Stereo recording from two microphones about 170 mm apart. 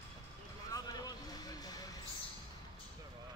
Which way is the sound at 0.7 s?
20° left (ahead or behind).